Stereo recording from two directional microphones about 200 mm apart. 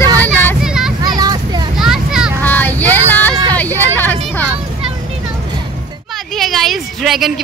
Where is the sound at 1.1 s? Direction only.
20° right (ahead or behind).